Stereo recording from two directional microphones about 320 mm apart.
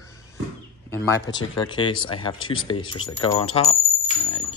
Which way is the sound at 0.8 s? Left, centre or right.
Centre.